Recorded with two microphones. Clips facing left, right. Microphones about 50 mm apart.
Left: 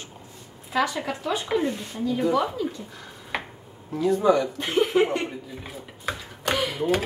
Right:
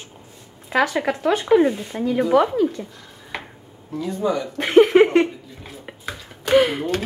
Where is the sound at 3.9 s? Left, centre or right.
Centre.